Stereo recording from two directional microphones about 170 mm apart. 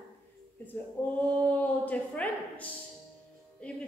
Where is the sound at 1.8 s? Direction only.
10° left (ahead or behind).